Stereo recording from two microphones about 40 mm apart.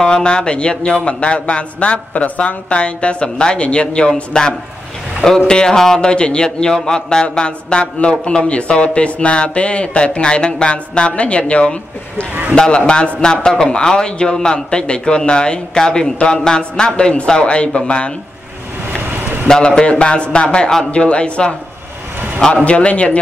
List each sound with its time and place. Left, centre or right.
0.0 s a man's voice: left
5.9 s a man's voice: left
19.5 s a man's voice: left
22.7 s a man's voice: left